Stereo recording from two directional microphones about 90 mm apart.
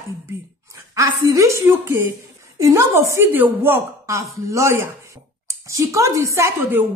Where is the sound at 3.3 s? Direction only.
20° right (ahead or behind).